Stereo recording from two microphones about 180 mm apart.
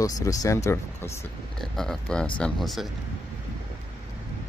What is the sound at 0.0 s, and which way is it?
Speech, 20° left (ahead or behind).